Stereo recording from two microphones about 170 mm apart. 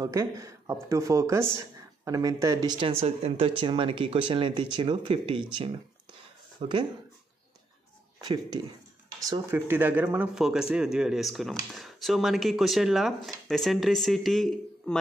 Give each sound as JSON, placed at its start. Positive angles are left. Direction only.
{"t": 0.0, "sound": "speech", "side_deg": -20}
{"t": 8.2, "sound": "speech", "side_deg": -25}